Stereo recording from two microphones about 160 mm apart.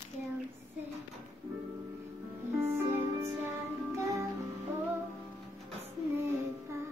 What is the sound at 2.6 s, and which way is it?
Music, 15° right (ahead or behind).